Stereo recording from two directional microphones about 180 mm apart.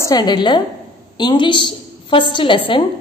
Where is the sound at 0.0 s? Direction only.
20° left (ahead or behind).